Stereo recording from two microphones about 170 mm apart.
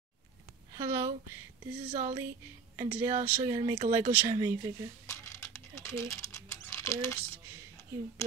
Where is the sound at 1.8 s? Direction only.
45° right (ahead or behind).